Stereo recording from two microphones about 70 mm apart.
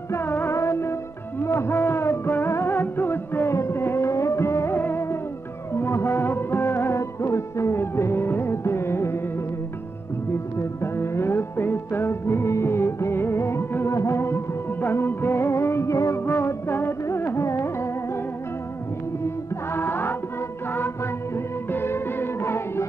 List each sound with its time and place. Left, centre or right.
0.1 s music: left
10.3 s music: left
19.2 s music: left